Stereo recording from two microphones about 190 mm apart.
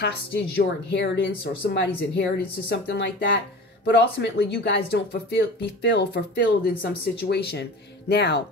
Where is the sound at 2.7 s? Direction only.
65° left (ahead or behind).